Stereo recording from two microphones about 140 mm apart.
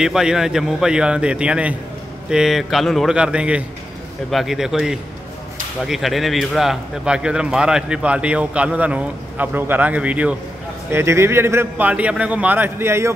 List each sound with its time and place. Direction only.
0.0 s a man's voice: 5° right (ahead or behind)